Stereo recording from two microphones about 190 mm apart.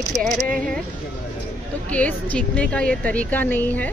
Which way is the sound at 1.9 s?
5° left (ahead or behind).